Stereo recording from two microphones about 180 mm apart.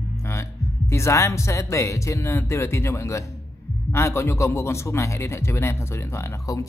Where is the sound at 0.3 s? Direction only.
15° left (ahead or behind).